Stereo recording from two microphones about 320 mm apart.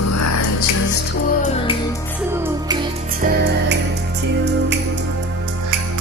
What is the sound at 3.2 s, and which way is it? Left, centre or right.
Music, right.